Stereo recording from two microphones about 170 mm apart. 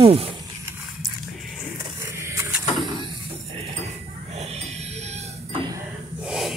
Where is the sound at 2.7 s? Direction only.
25° right (ahead or behind).